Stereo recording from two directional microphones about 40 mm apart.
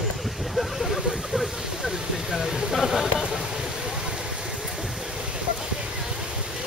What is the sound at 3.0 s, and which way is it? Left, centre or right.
Speech, centre.